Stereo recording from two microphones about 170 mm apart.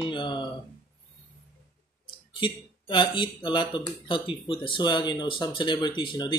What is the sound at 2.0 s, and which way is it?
Speech, 30° left (ahead or behind).